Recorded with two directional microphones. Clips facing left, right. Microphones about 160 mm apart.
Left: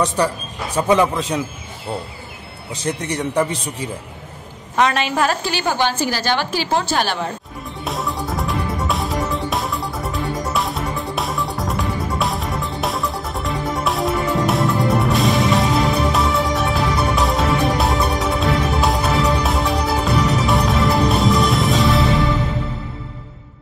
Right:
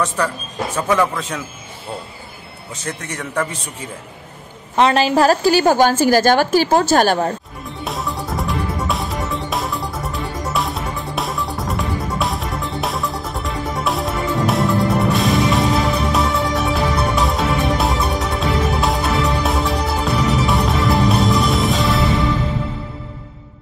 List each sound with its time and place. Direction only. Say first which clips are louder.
0.7 s a man's voice: left 3 dB; 15° left (ahead or behind)
2.8 s a man's voice: left 5 dB; 15° left (ahead or behind)
4.7 s a woman's voice: right 4 dB; 30° right (ahead or behind)
7.8 s music: left 1 dB; centre (ahead or behind)